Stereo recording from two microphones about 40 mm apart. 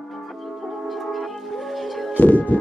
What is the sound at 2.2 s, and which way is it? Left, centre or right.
Music, left.